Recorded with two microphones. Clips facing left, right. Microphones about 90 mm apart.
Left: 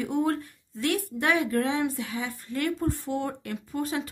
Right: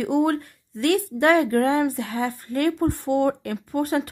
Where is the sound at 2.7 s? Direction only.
65° right (ahead or behind).